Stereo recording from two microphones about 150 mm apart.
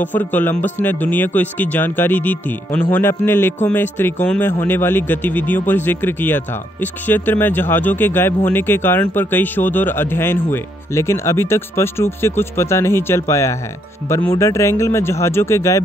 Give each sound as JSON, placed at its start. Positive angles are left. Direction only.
{"t": 0.0, "sound": "speech", "side_deg": 10}